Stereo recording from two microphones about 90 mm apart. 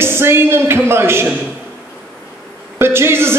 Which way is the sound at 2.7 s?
25° right (ahead or behind).